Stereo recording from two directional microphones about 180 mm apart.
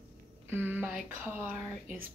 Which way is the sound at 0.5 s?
10° right (ahead or behind).